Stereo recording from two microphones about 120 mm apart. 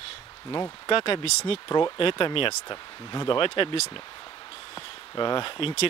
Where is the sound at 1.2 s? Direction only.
60° left (ahead or behind); by 3.8 s 45° left (ahead or behind).